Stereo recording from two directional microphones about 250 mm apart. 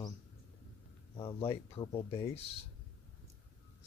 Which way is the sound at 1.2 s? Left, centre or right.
Left.